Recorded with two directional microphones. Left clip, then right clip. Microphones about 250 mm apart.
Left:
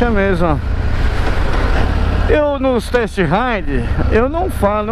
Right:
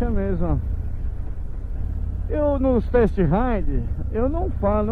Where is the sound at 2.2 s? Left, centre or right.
Centre.